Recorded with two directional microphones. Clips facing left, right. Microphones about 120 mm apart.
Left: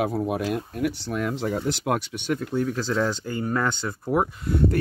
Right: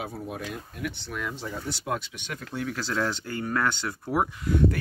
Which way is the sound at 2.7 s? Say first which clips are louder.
Left 4 dB; 20° left (ahead or behind).